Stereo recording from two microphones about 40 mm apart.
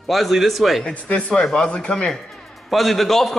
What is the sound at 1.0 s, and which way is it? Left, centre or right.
Speech, left.